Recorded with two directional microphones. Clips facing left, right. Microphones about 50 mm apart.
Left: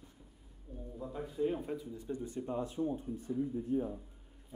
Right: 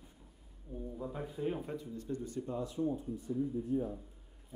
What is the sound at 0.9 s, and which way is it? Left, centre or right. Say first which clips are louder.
Speech: left 4 dB; centre.